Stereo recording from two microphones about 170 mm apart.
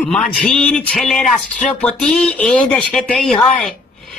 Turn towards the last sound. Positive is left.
turn(degrees=5)  # may be behind; listen again after turning